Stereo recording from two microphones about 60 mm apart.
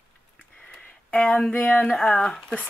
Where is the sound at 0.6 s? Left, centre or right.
Centre.